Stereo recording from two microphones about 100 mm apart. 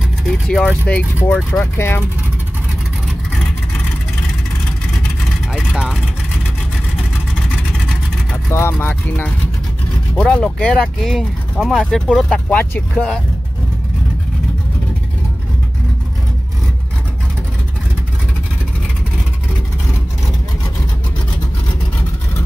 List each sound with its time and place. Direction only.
0.3 s speech: 5° left (ahead or behind)
0.8 s speech: 15° left (ahead or behind)
5.5 s vehicle: 5° right (ahead or behind)
8.5 s speech: 25° left (ahead or behind); by 13.2 s 10° left (ahead or behind)